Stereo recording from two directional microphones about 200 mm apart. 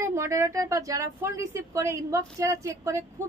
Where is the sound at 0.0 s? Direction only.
15° right (ahead or behind).